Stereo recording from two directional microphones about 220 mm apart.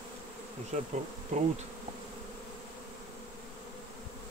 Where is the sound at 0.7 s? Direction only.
35° right (ahead or behind).